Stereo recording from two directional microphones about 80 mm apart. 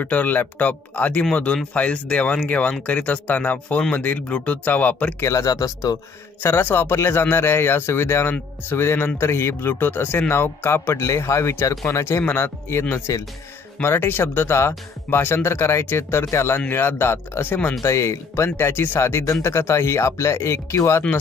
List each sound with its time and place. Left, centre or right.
0.0 s speech: left
5.2 s speech: left
6.4 s speech: left